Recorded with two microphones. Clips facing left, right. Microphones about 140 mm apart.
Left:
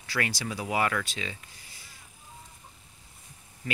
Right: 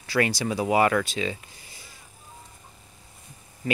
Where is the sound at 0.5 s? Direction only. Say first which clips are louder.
Right 7 dB; 30° right (ahead or behind).